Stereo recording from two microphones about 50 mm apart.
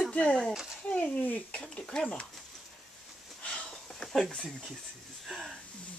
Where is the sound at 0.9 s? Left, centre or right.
Left.